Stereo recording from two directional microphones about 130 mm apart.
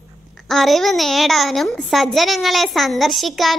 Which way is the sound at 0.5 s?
Centre (ahead or behind).